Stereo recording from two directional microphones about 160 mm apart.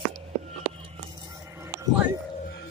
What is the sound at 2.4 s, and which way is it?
Music, 90° left.